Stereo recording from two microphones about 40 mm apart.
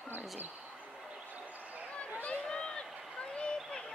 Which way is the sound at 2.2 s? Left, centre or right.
Centre.